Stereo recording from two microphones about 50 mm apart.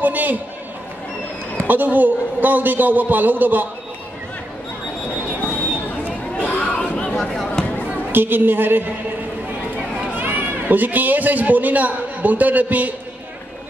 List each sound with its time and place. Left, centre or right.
0.0 s a man's voice: right
1.6 s a man's voice: right
6.7 s chatter: left
7.2 s a sound: centre
8.1 s a woman's voice: right
10.1 s a man's voice: right